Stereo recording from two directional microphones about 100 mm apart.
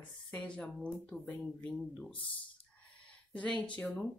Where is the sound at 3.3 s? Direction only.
10° left (ahead or behind).